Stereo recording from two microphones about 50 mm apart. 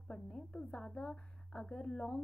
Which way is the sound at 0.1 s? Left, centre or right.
Centre.